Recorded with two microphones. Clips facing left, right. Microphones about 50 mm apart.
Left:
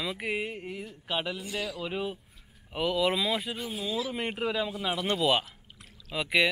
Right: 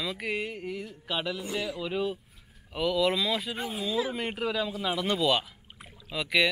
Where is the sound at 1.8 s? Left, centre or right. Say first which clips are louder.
Right 3 dB; centre.